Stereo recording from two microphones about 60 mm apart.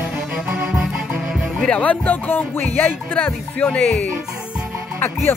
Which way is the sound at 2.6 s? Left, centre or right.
Centre.